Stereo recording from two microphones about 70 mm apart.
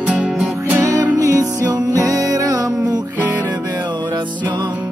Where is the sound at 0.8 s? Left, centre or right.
Right.